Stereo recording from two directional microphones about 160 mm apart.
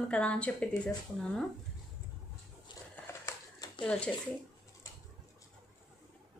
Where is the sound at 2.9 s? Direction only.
20° left (ahead or behind).